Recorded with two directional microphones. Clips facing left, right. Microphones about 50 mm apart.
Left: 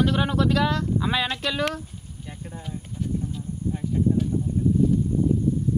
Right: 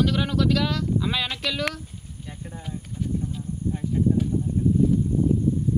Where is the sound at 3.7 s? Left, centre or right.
Centre.